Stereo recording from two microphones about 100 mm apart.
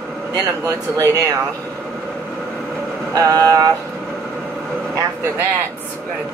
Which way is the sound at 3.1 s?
35° right (ahead or behind).